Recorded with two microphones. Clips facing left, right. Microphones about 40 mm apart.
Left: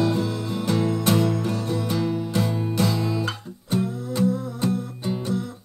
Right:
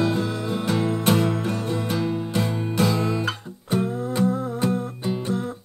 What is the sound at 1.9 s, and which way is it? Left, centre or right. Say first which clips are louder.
Music: left 1 dB; centre.